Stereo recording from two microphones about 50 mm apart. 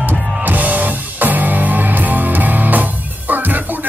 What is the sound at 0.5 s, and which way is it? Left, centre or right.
Music, right.